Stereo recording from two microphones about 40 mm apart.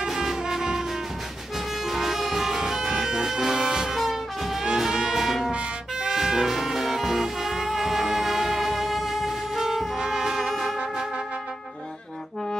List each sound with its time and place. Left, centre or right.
0.0 s music: centre
1.9 s music: centre
3.6 s vehicle: centre
3.9 s music: centre